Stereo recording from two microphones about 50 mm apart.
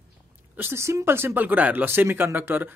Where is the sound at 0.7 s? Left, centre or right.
Right.